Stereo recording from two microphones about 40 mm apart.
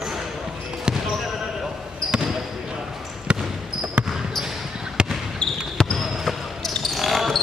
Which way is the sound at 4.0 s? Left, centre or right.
Right.